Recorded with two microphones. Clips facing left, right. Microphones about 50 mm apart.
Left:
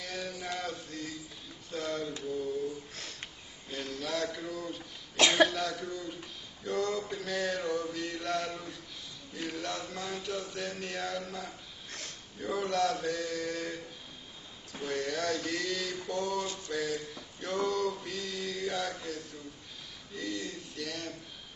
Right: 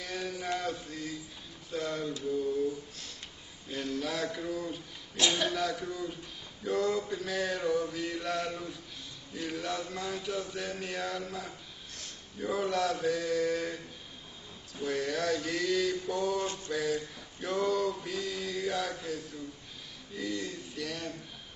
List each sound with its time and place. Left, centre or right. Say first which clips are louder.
0.0 s mantra: right 2 dB; centre
1.7 s male singing: right 1 dB; centre
3.7 s male singing: right 2 dB; centre
5.1 s speech: left 5 dB; left
5.5 s male singing: right 2 dB; centre
14.9 s male singing: right 2 dB; centre
16.3 s mantra: right 2 dB; right
16.7 s male singing: right 1 dB; centre
20.4 s male singing: right 2 dB; centre